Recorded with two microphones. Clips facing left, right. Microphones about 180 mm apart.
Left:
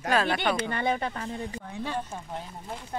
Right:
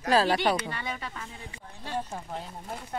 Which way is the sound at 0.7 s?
40° left (ahead or behind).